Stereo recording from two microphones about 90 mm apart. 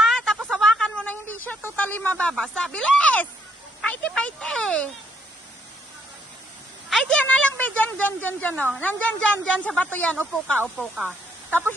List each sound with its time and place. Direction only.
0.0 s a sound: 5° left (ahead or behind)
1.8 s a woman's voice: 20° left (ahead or behind)
6.9 s a woman's voice: 10° left (ahead or behind)
11.0 s speech: 20° right (ahead or behind)